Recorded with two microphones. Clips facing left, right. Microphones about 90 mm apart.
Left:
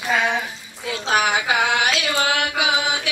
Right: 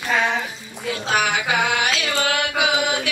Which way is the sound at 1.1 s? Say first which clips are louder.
Left 2 dB; 20° left (ahead or behind).